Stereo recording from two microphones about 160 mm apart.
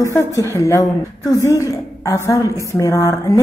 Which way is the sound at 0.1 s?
15° left (ahead or behind).